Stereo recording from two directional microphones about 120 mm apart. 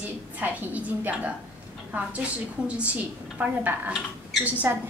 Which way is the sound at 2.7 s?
10° right (ahead or behind).